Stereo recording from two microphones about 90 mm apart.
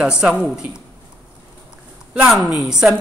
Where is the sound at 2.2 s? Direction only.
5° right (ahead or behind).